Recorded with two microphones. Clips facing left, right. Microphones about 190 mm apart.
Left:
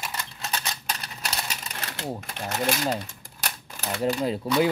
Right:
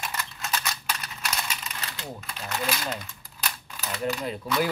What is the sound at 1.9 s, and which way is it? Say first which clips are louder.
Typewriter: left 5 dB; 70° left (ahead or behind).